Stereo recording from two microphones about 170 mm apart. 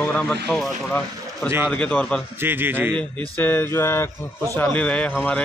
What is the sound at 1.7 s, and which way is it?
Speech, 5° left (ahead or behind).